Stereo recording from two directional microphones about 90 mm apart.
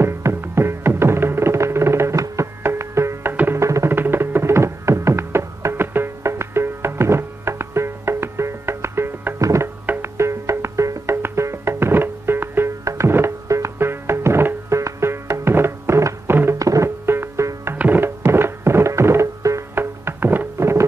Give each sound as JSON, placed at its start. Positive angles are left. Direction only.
{"t": 0.0, "sound": "music", "side_deg": -30}